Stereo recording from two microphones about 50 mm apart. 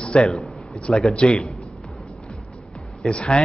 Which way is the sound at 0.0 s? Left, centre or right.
Centre.